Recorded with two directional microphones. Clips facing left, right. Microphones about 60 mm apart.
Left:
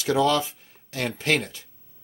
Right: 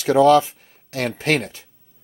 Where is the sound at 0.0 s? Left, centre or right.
Right.